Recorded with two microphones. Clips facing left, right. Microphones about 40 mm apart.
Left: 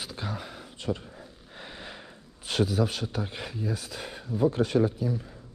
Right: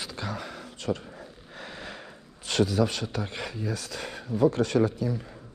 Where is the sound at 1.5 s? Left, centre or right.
Right.